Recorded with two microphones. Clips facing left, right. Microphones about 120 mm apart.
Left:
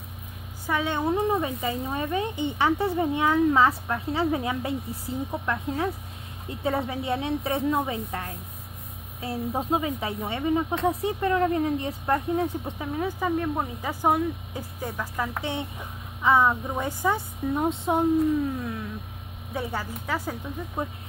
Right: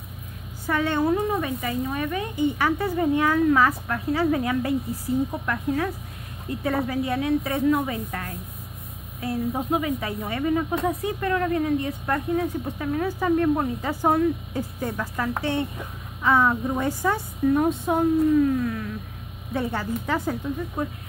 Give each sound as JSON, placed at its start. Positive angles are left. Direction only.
{"t": 0.7, "sound": "speech", "side_deg": 15}
{"t": 6.9, "sound": "speech", "side_deg": 25}
{"t": 12.7, "sound": "speech", "side_deg": 15}